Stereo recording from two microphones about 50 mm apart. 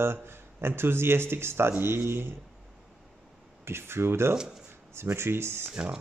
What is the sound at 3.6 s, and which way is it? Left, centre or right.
Speech, right.